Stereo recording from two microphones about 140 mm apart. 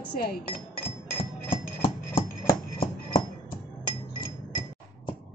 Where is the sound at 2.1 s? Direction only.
90° left.